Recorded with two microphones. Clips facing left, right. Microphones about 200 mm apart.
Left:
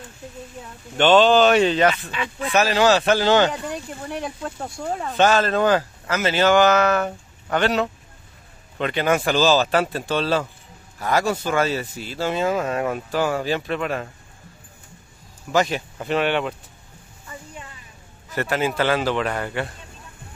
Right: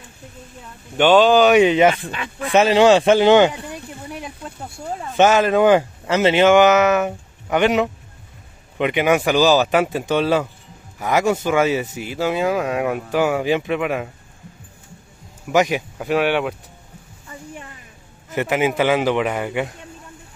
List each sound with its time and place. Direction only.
0.9 s speech: 10° right (ahead or behind)
2.0 s speech: 50° right (ahead or behind)
2.5 s speech: 25° right (ahead or behind)
5.1 s speech: 20° right (ahead or behind)
15.4 s speech: 15° right (ahead or behind)
18.3 s speech: 15° right (ahead or behind)